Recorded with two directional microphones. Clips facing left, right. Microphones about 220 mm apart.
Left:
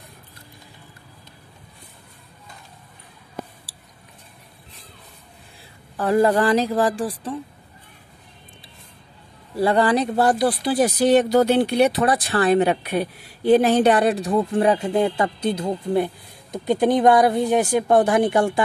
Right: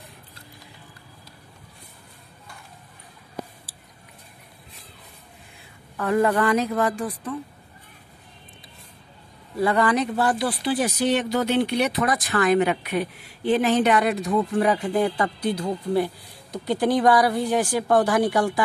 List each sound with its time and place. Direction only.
5.9 s speech: 30° left (ahead or behind)
9.6 s speech: 30° left (ahead or behind)